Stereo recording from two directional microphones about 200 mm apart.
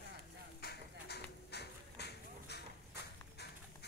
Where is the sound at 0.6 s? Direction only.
55° left (ahead or behind).